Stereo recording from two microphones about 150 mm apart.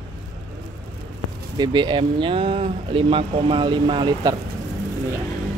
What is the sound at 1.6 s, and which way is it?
Speech, 30° right (ahead or behind).